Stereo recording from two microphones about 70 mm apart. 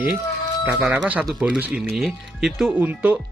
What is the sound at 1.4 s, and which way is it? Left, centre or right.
Speech, centre.